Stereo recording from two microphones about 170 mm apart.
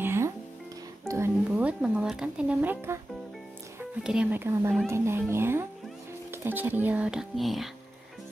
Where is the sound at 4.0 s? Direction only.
5° right (ahead or behind).